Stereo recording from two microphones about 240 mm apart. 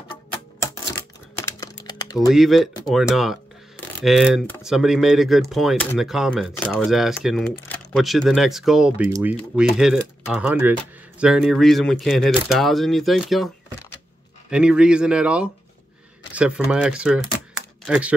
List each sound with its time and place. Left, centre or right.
0.1 s music: centre
2.1 s speech: centre
14.5 s speech: centre